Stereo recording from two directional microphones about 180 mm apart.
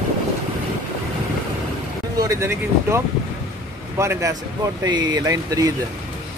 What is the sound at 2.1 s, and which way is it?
Speech, 15° right (ahead or behind).